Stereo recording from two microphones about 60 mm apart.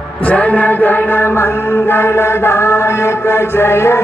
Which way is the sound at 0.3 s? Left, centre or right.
Left.